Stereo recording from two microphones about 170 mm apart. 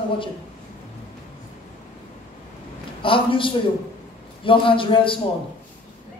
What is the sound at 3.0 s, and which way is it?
A man's voice, 30° left (ahead or behind).